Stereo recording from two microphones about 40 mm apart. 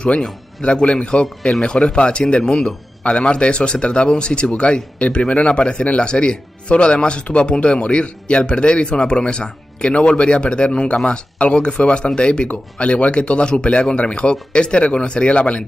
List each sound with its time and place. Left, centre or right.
0.2 s a man's voice: left